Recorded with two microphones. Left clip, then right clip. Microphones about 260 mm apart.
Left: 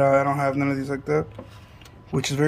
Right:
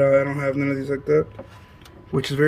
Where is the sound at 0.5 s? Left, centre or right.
Centre.